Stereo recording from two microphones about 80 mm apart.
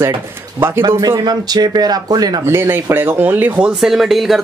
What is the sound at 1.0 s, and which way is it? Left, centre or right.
Speech, right.